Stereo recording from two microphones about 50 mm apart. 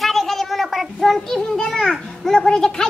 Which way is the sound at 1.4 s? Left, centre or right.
Centre.